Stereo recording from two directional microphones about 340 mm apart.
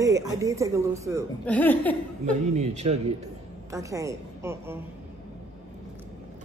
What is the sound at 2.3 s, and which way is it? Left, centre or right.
A man's voice, centre.